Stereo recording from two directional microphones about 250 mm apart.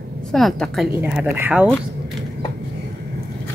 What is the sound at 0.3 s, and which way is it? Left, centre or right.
Speech, centre.